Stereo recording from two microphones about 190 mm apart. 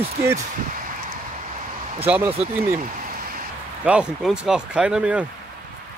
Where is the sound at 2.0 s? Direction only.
10° right (ahead or behind).